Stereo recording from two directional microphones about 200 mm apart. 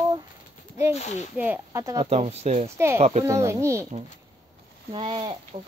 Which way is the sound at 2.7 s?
10° right (ahead or behind).